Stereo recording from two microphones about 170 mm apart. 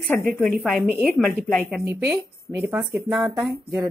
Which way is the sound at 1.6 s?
10° right (ahead or behind).